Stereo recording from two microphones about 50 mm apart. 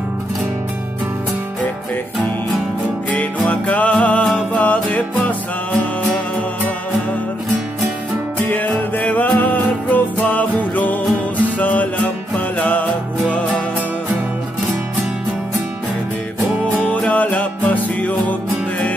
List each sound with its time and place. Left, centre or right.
3.1 s music: left
8.4 s music: left
16.7 s music: left